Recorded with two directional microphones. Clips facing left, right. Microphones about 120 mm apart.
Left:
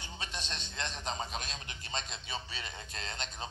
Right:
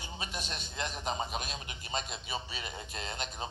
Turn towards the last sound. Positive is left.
turn(degrees=-10)  # may be behind; listen again after turning